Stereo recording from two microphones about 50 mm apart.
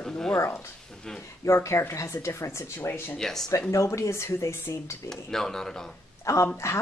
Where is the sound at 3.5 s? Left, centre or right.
Left.